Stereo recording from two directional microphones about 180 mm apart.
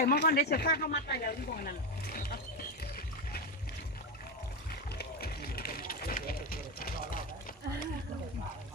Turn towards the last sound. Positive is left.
turn(degrees=55)  # may be behind; listen again after turning